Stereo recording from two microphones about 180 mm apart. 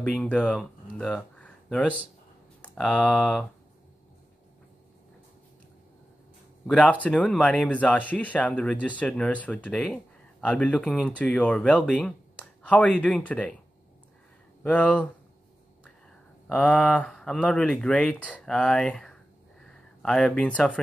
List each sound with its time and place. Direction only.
0.0 s speech: 5° left (ahead or behind)
6.7 s speech: 5° left (ahead or behind)
14.6 s speech: 5° left (ahead or behind)
16.4 s speech: 5° left (ahead or behind)